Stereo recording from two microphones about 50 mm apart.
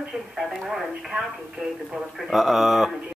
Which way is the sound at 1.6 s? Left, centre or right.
Centre.